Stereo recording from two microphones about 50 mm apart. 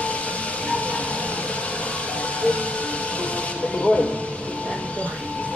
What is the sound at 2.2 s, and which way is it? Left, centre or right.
Music, left.